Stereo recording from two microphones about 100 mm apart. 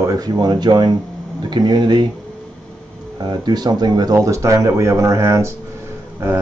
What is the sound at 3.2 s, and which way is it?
Speech, 45° right (ahead or behind).